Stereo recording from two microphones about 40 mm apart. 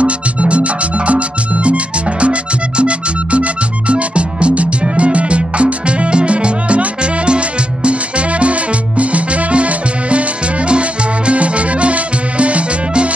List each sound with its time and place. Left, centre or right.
0.0 s music: right